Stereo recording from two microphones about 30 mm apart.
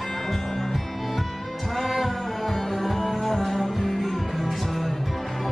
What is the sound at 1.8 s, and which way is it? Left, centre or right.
Music, centre.